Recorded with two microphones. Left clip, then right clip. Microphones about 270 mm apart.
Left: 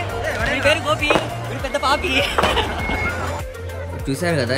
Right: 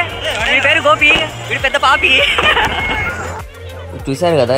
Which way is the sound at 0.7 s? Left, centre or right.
Right.